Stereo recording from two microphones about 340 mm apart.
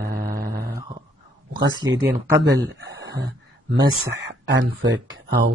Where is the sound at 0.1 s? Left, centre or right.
Right.